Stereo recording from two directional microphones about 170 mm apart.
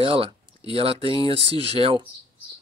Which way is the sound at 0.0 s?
30° right (ahead or behind).